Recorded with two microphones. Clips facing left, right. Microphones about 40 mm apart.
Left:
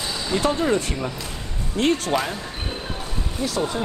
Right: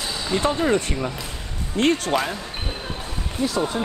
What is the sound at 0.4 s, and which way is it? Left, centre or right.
Speech, right.